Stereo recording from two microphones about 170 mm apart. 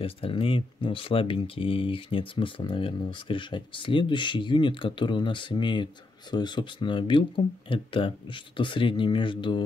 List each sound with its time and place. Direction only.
0.0 s speech: 30° left (ahead or behind)